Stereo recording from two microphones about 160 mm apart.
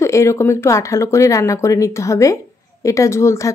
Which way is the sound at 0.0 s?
20° left (ahead or behind).